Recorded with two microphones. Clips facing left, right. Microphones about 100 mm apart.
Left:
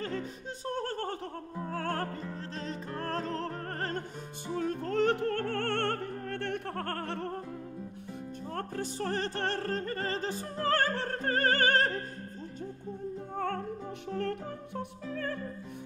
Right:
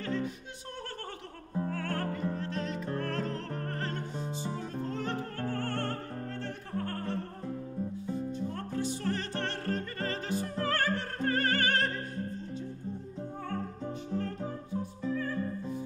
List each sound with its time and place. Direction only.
1.7 s music: 35° left (ahead or behind)
4.6 s music: 65° left (ahead or behind)
8.1 s music: 50° left (ahead or behind)
14.1 s music: 65° left (ahead or behind)